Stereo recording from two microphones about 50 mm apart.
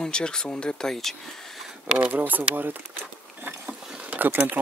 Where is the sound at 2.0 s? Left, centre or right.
Right.